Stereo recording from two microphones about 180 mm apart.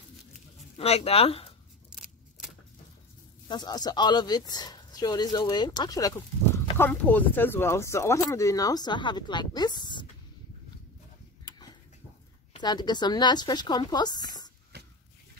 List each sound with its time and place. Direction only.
0.7 s speech: 35° left (ahead or behind)
3.4 s speech: 25° left (ahead or behind)
12.5 s speech: 25° left (ahead or behind)
14.7 s a sound: 65° right (ahead or behind)